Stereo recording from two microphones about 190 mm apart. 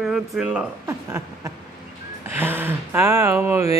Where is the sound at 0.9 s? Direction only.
15° right (ahead or behind).